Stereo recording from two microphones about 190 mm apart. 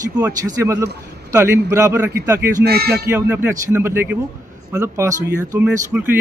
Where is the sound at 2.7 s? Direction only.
60° right (ahead or behind).